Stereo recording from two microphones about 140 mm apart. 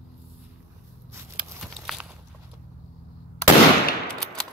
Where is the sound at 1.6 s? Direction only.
Centre (ahead or behind).